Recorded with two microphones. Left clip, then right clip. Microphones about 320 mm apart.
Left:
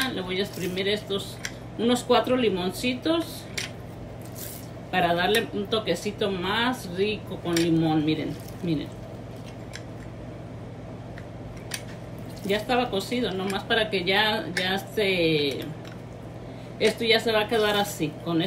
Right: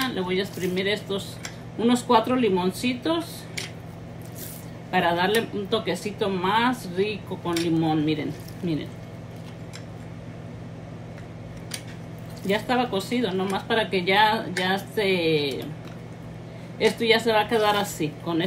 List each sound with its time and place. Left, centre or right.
0.0 s speech: centre
4.9 s speech: right
12.4 s speech: right
16.7 s speech: centre